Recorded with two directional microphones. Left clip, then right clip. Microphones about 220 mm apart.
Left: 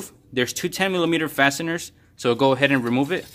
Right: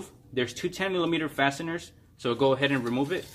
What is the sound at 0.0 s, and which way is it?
Speech, 40° left (ahead or behind).